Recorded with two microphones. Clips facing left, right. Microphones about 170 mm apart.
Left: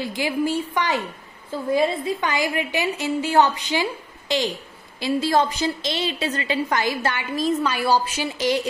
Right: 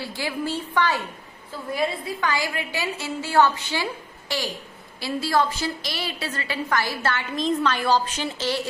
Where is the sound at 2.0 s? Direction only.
20° left (ahead or behind).